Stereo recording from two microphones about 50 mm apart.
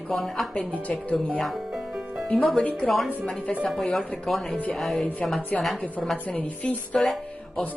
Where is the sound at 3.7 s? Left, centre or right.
Centre.